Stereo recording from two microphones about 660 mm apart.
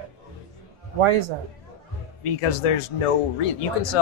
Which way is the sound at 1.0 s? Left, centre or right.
Right.